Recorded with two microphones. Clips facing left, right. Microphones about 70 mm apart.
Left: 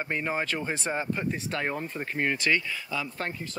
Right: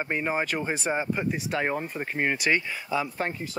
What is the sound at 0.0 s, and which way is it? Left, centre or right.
Speech, centre.